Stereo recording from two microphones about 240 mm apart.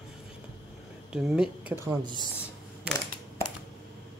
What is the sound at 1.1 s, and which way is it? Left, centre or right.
Speech, centre.